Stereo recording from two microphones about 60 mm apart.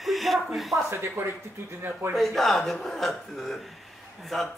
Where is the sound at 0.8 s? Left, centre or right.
Right.